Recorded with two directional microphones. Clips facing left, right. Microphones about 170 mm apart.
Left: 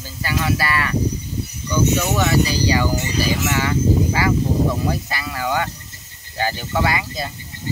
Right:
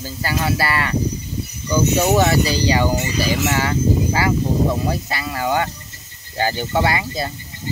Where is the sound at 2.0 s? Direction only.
35° right (ahead or behind).